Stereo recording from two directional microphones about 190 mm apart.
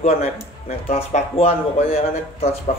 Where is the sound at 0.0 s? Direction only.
35° left (ahead or behind).